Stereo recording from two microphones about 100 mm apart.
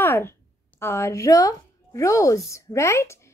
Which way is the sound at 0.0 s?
25° left (ahead or behind).